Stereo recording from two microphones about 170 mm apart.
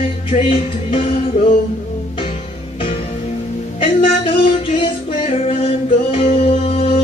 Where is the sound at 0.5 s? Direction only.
35° left (ahead or behind).